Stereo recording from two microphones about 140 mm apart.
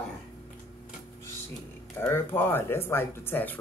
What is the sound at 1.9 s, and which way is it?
Speech, 15° left (ahead or behind).